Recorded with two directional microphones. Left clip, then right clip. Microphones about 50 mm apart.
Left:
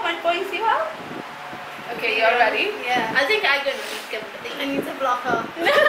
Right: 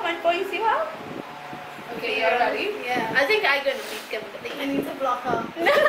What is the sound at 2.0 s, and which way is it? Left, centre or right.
A woman's voice, right.